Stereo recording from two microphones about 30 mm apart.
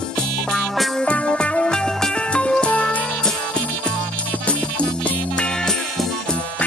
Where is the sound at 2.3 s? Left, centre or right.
Left.